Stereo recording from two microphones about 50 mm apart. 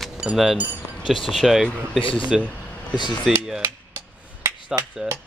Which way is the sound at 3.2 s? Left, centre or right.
Centre.